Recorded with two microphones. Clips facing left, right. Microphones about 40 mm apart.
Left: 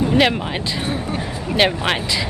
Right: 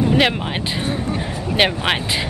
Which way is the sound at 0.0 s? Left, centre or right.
Centre.